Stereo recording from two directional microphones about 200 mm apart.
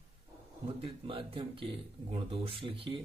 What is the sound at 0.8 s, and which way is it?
Speech, 25° right (ahead or behind).